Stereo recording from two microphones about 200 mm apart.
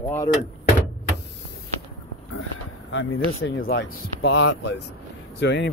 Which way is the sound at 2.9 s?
70° left (ahead or behind).